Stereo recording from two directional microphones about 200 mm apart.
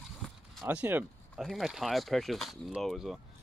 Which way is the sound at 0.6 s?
10° right (ahead or behind).